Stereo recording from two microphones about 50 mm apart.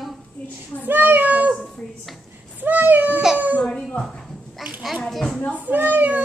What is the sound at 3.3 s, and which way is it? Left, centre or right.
Baby cry, right.